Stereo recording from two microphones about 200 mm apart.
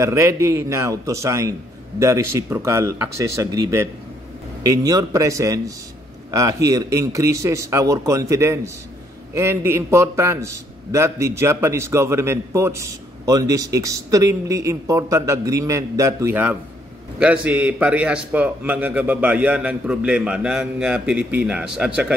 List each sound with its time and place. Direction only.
0.0 s a man's voice: 15° right (ahead or behind)